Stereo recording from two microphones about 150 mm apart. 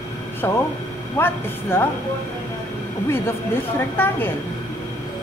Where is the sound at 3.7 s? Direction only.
15° left (ahead or behind).